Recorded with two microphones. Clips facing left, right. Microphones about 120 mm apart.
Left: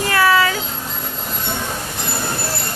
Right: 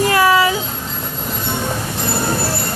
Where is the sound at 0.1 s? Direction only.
15° right (ahead or behind).